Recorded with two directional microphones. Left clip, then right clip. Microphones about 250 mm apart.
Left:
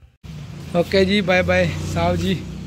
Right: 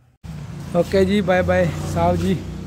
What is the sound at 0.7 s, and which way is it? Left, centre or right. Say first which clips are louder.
Speech: even; centre.